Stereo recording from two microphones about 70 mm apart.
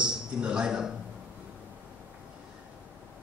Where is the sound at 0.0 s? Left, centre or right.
Centre.